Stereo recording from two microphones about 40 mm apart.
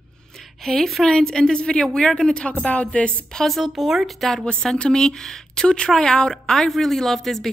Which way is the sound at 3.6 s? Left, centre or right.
Centre.